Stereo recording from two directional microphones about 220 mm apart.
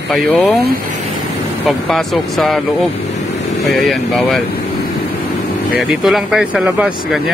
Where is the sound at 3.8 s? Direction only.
Centre (ahead or behind).